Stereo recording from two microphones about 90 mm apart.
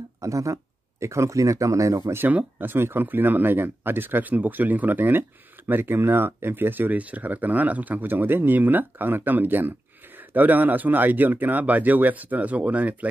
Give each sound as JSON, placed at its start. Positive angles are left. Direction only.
{"t": 0.2, "sound": "speech", "side_deg": -35}
{"t": 2.2, "sound": "speech", "side_deg": -20}